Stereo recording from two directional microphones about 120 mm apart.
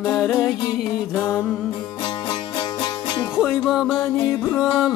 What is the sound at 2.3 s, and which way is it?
Music, 40° left (ahead or behind).